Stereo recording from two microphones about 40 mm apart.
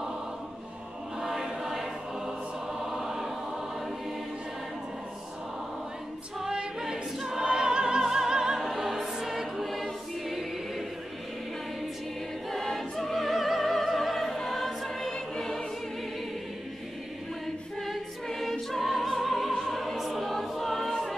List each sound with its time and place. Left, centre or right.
1.2 s chant: centre
2.8 s choir: centre
6.4 s choir: centre
8.0 s opera: centre
8.6 s choir: centre
12.4 s music: centre
17.8 s music: centre